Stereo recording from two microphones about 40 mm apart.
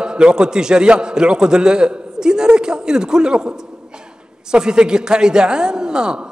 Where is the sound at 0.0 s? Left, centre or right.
Right.